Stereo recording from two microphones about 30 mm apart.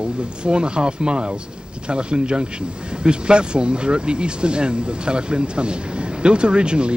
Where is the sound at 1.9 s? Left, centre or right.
Right.